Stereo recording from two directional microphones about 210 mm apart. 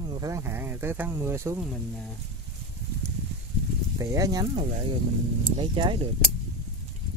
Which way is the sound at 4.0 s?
15° right (ahead or behind).